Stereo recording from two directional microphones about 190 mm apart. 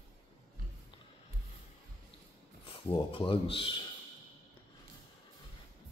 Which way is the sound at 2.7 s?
25° left (ahead or behind).